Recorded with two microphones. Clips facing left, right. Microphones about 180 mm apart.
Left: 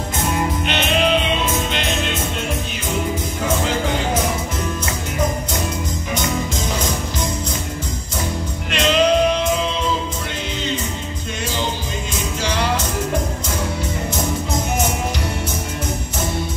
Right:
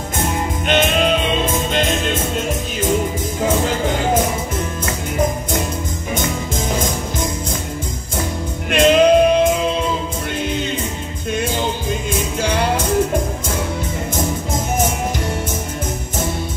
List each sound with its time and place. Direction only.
0.7 s music: 50° right (ahead or behind)
8.6 s music: 50° right (ahead or behind)
12.1 s music: 55° right (ahead or behind)
14.1 s music: 50° right (ahead or behind)